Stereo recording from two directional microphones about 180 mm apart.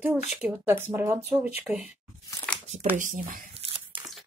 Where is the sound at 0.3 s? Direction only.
10° right (ahead or behind).